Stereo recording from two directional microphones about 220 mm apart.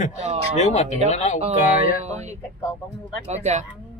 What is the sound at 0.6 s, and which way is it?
Speech, 30° left (ahead or behind).